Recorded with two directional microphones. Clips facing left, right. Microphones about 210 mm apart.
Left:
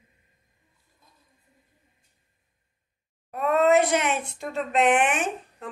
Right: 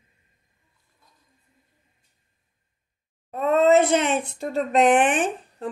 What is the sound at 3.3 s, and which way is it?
Speech, 25° right (ahead or behind).